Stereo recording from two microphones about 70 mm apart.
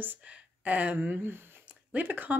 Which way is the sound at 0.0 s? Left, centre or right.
Right.